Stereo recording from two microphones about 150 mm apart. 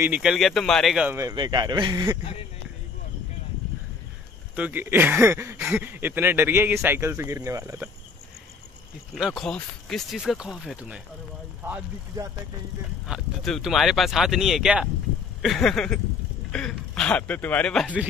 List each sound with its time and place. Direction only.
0.0 s speech: 5° right (ahead or behind)
1.3 s speech: 30° right (ahead or behind)
4.6 s speech: 10° right (ahead or behind)
9.1 s speech: centre (ahead or behind)
13.0 s speech: centre (ahead or behind)